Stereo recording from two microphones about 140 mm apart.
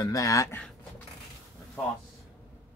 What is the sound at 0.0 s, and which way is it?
Speech, 25° left (ahead or behind).